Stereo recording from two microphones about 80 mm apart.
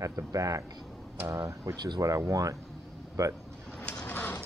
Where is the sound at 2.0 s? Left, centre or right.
Right.